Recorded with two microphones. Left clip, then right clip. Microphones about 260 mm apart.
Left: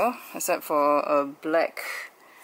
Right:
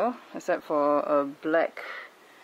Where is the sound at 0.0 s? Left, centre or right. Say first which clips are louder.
Left 3 dB; centre.